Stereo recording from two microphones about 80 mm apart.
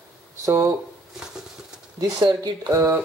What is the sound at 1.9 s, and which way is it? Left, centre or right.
Speech, right.